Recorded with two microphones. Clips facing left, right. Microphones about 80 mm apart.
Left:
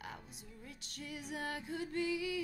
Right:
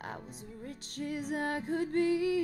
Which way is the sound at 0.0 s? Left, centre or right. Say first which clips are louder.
Right 7 dB; right.